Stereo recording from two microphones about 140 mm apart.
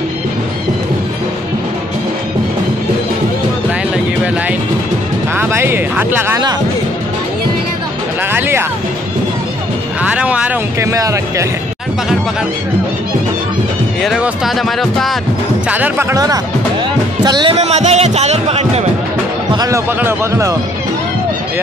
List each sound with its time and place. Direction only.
5.3 s a sound: 15° right (ahead or behind)
8.3 s music: 15° right (ahead or behind)
10.0 s speech: 10° right (ahead or behind)
10.8 s speech: 20° right (ahead or behind)
14.0 s speech: 5° right (ahead or behind)
15.7 s speech: 15° right (ahead or behind)
17.2 s speech: 30° right (ahead or behind)
17.6 s speech: 55° right (ahead or behind)
19.5 s speech: 25° right (ahead or behind)
19.9 s speech: 15° right (ahead or behind)